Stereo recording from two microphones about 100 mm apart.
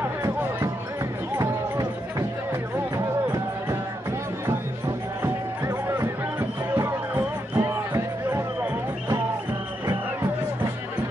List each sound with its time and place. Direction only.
0.2 s music: 25° right (ahead or behind)
5.2 s music: 30° right (ahead or behind)